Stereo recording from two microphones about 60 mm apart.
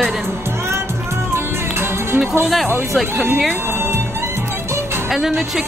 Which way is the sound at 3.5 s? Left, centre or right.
Right.